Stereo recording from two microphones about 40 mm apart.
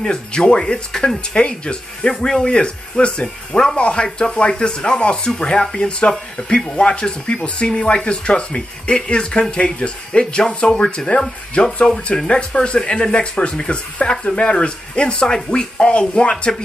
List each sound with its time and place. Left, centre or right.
0.0 s speech: centre
2.1 s speech: centre
2.4 s speech: left